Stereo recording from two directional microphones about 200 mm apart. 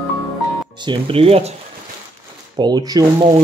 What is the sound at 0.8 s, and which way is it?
Speech, 25° right (ahead or behind).